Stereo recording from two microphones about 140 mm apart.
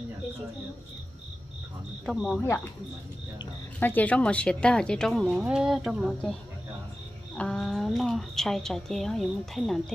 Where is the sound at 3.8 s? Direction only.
10° left (ahead or behind).